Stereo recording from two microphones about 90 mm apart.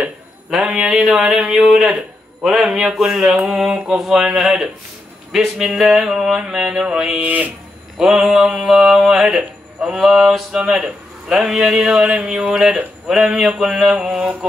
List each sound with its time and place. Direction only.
0.0 s a man's voice: 10° right (ahead or behind)
7.2 s speech: 20° right (ahead or behind)
8.0 s speech: 5° right (ahead or behind)